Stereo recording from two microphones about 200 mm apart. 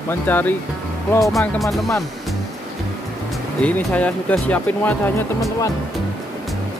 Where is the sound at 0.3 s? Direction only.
10° left (ahead or behind).